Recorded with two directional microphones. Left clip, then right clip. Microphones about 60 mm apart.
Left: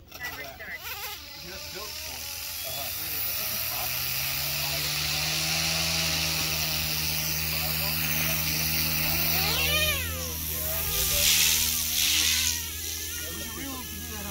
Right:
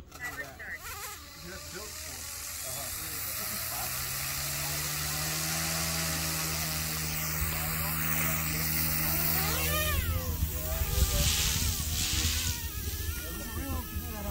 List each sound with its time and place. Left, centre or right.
4.1 s vehicle: right
5.1 s chainsaw: right
7.2 s vehicle: centre
7.4 s vehicle: centre
7.9 s vehicle: centre
8.7 s a sound: centre
9.3 s cat: centre
11.2 s a sound: centre
12.1 s vehicle: centre